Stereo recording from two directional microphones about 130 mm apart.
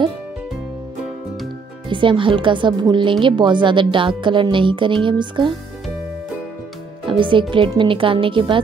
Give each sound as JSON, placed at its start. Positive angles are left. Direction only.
{"t": 1.9, "sound": "a woman's voice", "side_deg": -40}
{"t": 7.1, "sound": "a woman's voice", "side_deg": -40}